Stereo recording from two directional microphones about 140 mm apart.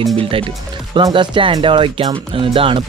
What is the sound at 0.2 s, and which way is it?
Speech, 40° right (ahead or behind).